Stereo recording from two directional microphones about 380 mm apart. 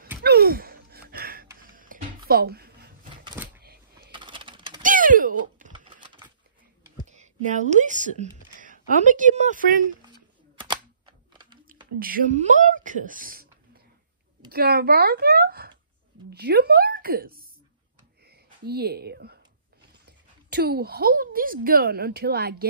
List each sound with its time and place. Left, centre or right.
0.2 s gasp: right
3.3 s a sound: centre
4.1 s typing: centre
7.1 s speech: centre
10.6 s computer keyboard: centre
12.0 s speech: right
14.5 s speech: right
16.3 s a sound: right
18.7 s a woman's voice: right